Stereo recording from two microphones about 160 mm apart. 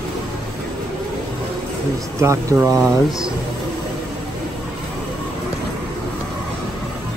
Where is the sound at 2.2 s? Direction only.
20° right (ahead or behind).